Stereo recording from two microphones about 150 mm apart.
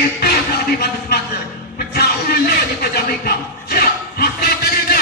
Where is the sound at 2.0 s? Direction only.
90° left.